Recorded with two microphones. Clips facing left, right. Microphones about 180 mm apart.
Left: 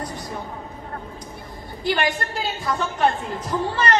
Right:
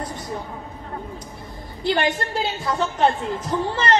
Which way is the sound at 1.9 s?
25° right (ahead or behind).